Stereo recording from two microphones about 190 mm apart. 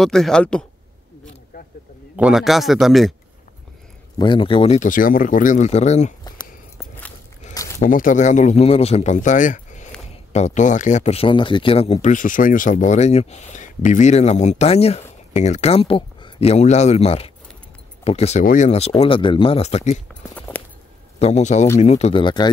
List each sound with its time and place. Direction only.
0.0 s speech: centre (ahead or behind)
2.1 s speech: 5° right (ahead or behind)
4.2 s speech: 25° left (ahead or behind)
4.8 s speech: 45° left (ahead or behind)
7.5 s a sound: 15° left (ahead or behind)
7.8 s speech: 45° left (ahead or behind)
20.3 s walk: 10° left (ahead or behind)
21.2 s speech: 35° left (ahead or behind)